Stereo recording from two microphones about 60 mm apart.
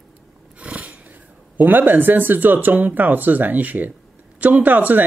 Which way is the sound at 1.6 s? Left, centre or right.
Right.